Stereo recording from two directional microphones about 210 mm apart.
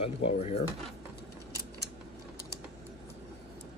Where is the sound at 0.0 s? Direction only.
30° left (ahead or behind).